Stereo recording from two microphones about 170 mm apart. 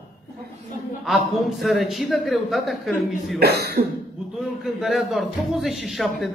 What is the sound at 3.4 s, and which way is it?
Speech, 65° right (ahead or behind).